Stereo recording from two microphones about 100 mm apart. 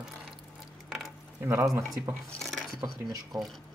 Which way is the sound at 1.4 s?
30° right (ahead or behind).